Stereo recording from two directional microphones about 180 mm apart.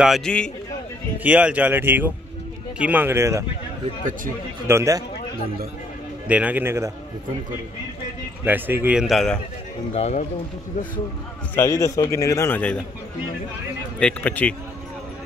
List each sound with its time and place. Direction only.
0.0 s a man's voice: centre (ahead or behind)
1.2 s speech: 10° right (ahead or behind)
4.6 s speech: 15° right (ahead or behind)
6.2 s speech: 10° right (ahead or behind)
8.5 s speech: 10° right (ahead or behind)
9.9 s speech: 40° left (ahead or behind)
11.5 s a man's voice: 15° left (ahead or behind)
13.9 s a man's voice: 5° left (ahead or behind)